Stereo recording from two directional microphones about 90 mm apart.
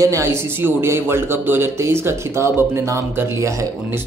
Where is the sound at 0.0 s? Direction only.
35° right (ahead or behind).